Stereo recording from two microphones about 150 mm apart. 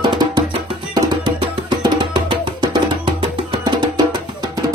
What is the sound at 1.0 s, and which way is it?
Music, 30° right (ahead or behind).